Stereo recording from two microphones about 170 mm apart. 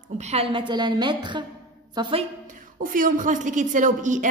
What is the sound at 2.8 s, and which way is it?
A woman's voice, 55° right (ahead or behind).